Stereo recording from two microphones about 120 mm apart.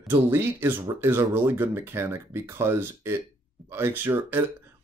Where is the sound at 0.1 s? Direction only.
20° right (ahead or behind).